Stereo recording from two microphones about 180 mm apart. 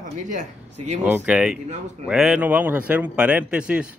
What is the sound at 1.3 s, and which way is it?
A man's voice, 5° right (ahead or behind).